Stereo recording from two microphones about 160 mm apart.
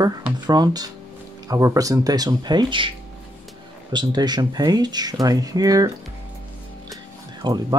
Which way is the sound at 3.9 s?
25° right (ahead or behind).